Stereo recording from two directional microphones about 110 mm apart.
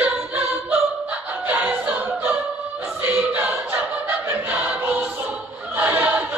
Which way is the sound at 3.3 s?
15° right (ahead or behind).